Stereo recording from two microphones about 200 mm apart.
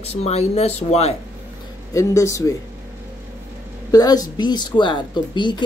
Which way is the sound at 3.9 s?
20° left (ahead or behind).